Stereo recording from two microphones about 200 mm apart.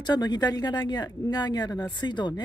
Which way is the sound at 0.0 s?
20° left (ahead or behind).